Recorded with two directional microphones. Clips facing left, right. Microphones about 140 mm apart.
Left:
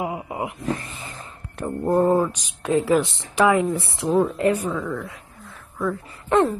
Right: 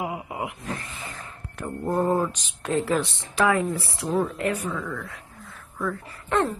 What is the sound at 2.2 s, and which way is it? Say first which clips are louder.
Speech: left 4 dB; 5° left (ahead or behind).